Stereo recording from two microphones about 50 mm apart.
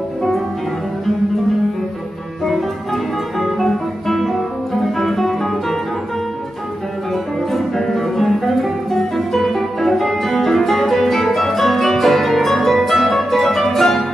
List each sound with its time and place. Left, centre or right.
2.4 s guitar: centre
4.9 s music: centre
7.1 s music: centre